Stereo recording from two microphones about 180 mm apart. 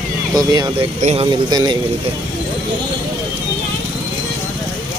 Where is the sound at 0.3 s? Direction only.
20° right (ahead or behind).